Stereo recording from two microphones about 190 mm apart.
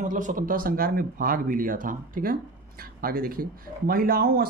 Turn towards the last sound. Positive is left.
turn(degrees=-50)  # may be behind; listen again after turning